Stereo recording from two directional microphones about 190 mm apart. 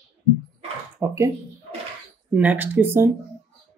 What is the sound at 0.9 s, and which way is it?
Speech, 15° right (ahead or behind).